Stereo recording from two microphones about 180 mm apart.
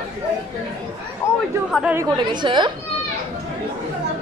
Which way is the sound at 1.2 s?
15° left (ahead or behind).